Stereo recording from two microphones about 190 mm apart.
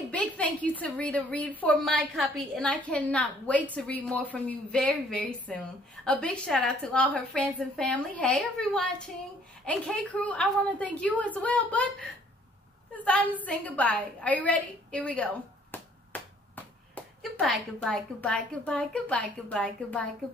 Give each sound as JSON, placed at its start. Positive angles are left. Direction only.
{"t": 0.1, "sound": "a woman's voice", "side_deg": 5}